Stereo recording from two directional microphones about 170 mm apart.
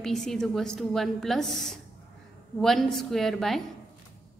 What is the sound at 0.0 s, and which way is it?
A woman's voice, centre (ahead or behind).